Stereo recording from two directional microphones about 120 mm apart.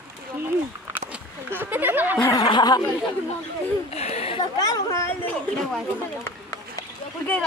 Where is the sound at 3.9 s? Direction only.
60° left (ahead or behind).